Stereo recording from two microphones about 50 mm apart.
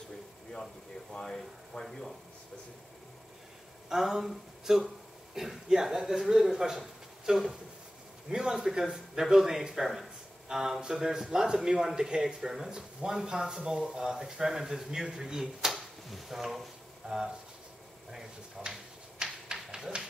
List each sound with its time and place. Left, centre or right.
1.1 s speech: centre
3.9 s a man's voice: centre
8.3 s a man's voice: centre
18.6 s a man's voice: centre
19.2 s a sound: centre